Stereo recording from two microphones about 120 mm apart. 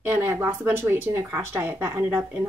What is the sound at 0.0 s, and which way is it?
Speech, 20° right (ahead or behind).